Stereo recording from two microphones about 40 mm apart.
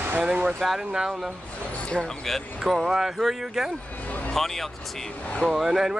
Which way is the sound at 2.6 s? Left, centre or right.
Centre.